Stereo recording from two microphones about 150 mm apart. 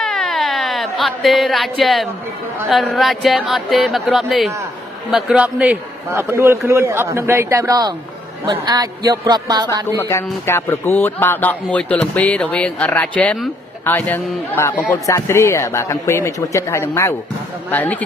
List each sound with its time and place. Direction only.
0.0 s a sound: centre (ahead or behind)
2.7 s a man's voice: centre (ahead or behind); by 9.7 s 25° right (ahead or behind)
9.9 s a man's voice: 15° left (ahead or behind)